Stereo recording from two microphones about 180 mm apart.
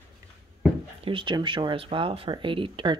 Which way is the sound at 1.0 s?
30° right (ahead or behind).